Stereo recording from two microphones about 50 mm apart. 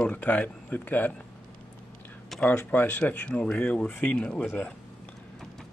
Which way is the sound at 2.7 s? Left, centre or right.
Left.